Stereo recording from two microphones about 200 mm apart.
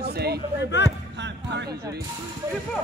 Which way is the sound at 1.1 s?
60° right (ahead or behind).